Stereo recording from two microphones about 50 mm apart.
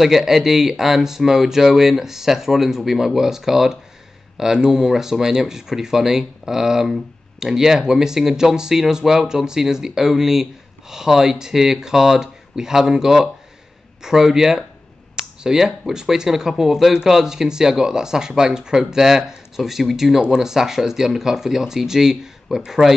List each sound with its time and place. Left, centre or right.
0.0 s speech: centre